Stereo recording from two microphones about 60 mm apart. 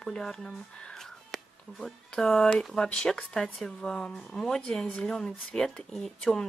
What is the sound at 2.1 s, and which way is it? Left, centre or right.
Speech, centre.